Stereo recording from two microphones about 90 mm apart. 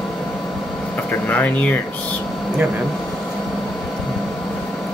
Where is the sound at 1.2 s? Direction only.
20° left (ahead or behind).